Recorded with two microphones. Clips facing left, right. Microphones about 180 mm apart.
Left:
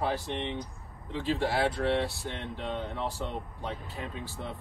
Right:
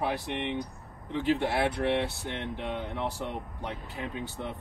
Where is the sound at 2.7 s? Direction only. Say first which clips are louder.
Left 1 dB; 15° right (ahead or behind).